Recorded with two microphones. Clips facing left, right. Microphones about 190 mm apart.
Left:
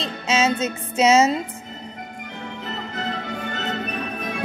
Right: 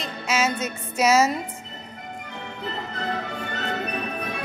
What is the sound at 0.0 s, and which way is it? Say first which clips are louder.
Music: left 3 dB; 25° left (ahead or behind).